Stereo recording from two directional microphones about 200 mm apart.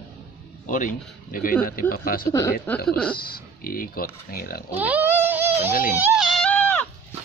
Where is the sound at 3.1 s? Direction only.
50° left (ahead or behind).